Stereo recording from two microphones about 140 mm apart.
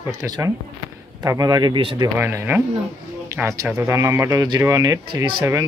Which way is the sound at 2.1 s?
15° right (ahead or behind).